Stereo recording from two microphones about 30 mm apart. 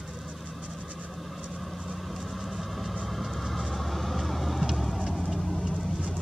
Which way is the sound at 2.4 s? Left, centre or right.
Centre.